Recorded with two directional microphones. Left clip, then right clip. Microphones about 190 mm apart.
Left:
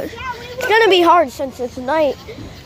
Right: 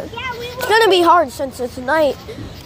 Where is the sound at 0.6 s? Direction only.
15° left (ahead or behind).